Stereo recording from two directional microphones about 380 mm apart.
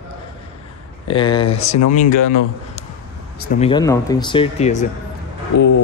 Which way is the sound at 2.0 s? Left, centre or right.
Left.